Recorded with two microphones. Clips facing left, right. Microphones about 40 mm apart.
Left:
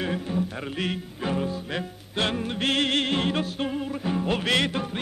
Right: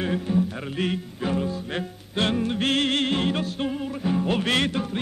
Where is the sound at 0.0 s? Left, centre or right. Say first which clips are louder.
Right 3 dB; centre.